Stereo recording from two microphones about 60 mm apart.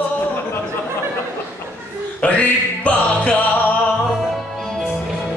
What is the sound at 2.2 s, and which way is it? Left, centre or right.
Music, left.